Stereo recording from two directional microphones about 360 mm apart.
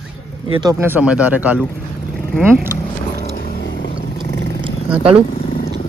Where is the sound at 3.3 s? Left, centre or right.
Left.